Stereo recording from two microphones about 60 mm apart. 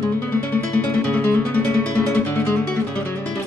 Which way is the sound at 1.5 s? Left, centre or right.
Left.